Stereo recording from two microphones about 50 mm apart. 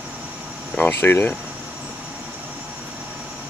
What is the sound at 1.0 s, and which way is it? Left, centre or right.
Speech, left.